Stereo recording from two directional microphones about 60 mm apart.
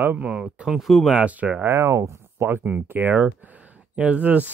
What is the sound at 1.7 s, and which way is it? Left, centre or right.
Speech, right.